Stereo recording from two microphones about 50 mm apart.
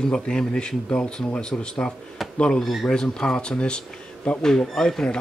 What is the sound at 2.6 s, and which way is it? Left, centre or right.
Speech, centre.